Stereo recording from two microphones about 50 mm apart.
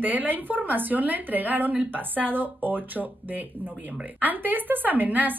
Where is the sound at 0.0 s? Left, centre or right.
Right.